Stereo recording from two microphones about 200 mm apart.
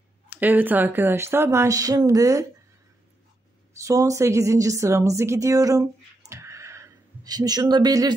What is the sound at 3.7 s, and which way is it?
A woman's voice, 15° right (ahead or behind).